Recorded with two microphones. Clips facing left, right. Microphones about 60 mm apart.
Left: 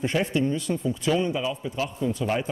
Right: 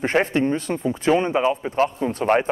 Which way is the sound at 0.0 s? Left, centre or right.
Right.